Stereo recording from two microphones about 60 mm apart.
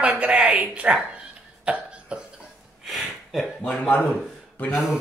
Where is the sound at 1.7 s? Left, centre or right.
Right.